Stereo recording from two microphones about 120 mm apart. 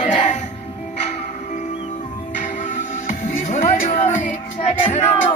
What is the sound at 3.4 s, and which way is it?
Music, 55° left (ahead or behind).